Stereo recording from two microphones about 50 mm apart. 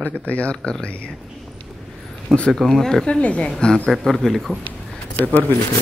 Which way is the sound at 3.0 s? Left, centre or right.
Left.